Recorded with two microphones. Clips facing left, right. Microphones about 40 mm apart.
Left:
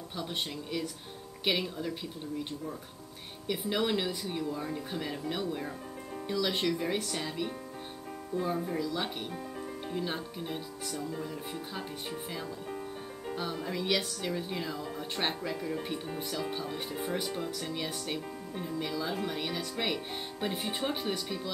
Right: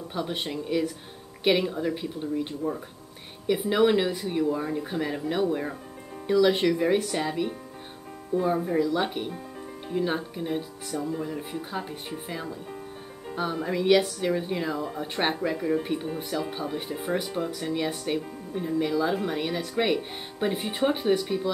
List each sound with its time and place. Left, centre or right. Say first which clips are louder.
0.1 s speech: right 6 dB; centre
3.4 s speech: right 9 dB; centre
6.2 s speech: right 9 dB; centre